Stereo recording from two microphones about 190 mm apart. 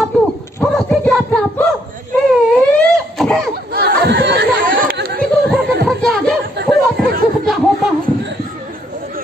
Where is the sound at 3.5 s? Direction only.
55° right (ahead or behind).